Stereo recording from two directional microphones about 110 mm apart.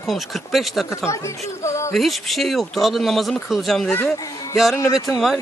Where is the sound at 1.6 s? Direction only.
25° left (ahead or behind).